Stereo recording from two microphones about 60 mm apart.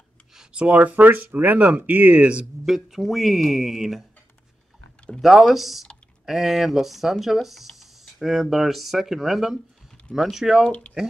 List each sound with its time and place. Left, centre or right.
0.5 s speech: centre
2.6 s speech: centre
5.2 s speech: centre